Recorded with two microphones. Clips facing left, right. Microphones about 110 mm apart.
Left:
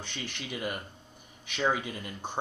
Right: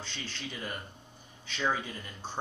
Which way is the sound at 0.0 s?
15° left (ahead or behind).